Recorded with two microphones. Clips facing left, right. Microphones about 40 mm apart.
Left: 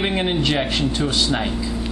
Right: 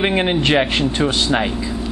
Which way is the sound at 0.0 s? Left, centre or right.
Right.